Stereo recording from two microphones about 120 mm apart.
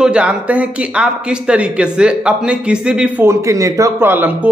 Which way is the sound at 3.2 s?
25° right (ahead or behind).